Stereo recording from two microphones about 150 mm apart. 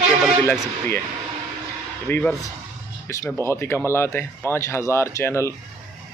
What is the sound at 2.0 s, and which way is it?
Speech, 10° left (ahead or behind).